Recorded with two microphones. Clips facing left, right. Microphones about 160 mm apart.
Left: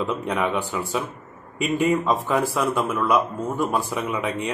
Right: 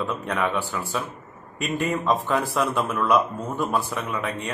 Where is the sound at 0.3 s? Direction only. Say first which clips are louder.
Even; 15° left (ahead or behind).